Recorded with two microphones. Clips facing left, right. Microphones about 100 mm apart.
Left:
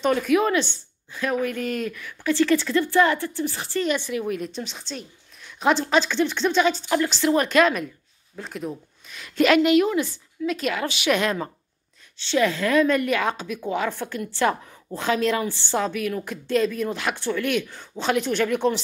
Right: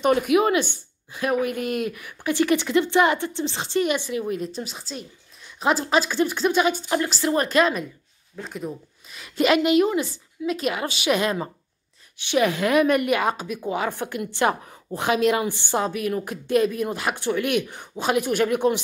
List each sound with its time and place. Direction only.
0.3 s speech: 10° right (ahead or behind)
4.2 s a woman's voice: centre (ahead or behind)